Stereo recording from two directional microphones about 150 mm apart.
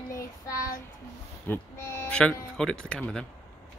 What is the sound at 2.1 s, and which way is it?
Speech, 5° left (ahead or behind).